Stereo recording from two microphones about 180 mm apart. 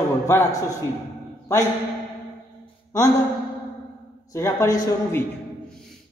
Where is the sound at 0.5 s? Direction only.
20° left (ahead or behind).